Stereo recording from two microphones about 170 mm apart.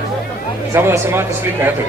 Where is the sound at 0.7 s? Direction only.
15° right (ahead or behind).